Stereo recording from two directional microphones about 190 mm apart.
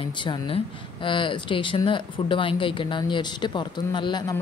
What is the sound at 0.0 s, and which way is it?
Speech, 25° left (ahead or behind).